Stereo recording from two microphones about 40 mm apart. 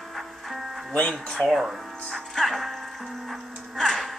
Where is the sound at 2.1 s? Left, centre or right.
Centre.